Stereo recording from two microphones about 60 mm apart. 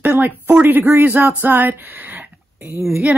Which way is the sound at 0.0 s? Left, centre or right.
Right.